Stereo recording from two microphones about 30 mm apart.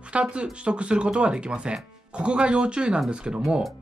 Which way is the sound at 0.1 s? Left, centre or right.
Right.